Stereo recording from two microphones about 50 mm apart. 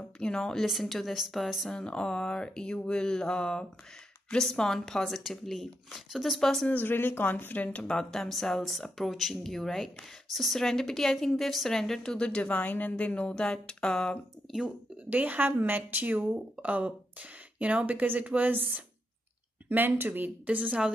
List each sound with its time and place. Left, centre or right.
0.0 s a woman's voice: centre
0.7 s speech: centre
1.7 s a woman's voice: centre
6.7 s speech: left
7.9 s a woman's voice: centre
12.5 s speech: left
13.3 s a woman's voice: centre
15.0 s speech: right
20.4 s a woman's voice: right